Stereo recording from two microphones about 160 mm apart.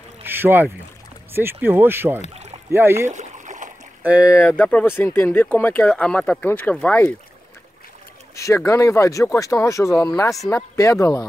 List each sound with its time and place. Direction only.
0.2 s boat: 15° right (ahead or behind)
1.3 s speech: 15° right (ahead or behind)
3.1 s boat: 50° right (ahead or behind)
4.0 s speech: 10° right (ahead or behind)
4.5 s speech: 10° left (ahead or behind)
8.4 s speech: 20° left (ahead or behind)